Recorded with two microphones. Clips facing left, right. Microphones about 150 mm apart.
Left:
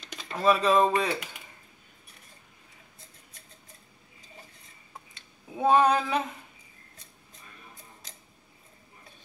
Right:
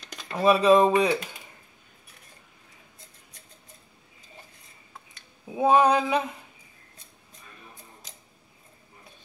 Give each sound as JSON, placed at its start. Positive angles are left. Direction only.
{"t": 0.0, "sound": "a sound", "side_deg": 0}
{"t": 0.4, "sound": "speech", "side_deg": -10}
{"t": 5.6, "sound": "speech", "side_deg": -15}